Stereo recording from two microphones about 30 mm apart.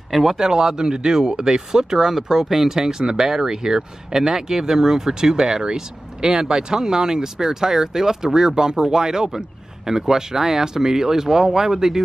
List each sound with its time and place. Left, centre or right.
0.1 s speech: centre
0.4 s speech: centre